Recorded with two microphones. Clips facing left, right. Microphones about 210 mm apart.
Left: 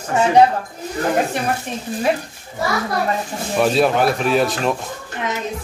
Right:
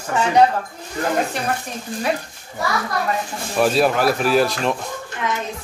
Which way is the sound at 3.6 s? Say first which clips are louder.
Left 1 dB; centre (ahead or behind).